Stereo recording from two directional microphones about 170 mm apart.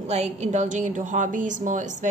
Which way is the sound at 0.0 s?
40° right (ahead or behind).